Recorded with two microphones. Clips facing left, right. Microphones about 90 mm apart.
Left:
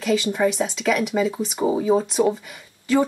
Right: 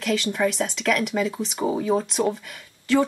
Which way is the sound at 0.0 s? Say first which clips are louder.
Left 3 dB; 5° left (ahead or behind).